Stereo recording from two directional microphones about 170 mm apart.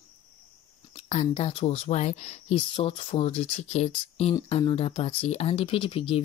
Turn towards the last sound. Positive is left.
turn(degrees=30)  # may be behind; listen again after turning